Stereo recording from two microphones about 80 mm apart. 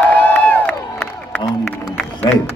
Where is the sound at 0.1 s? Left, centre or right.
Centre.